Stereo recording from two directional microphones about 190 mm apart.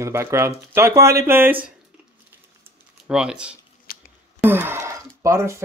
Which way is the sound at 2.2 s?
5° right (ahead or behind).